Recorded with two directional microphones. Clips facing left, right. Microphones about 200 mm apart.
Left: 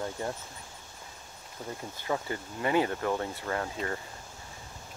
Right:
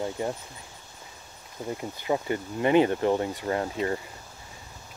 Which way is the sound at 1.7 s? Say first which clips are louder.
Right 5 dB; 15° right (ahead or behind).